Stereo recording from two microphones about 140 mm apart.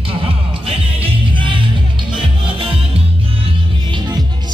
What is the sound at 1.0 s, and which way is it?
Music, 35° right (ahead or behind).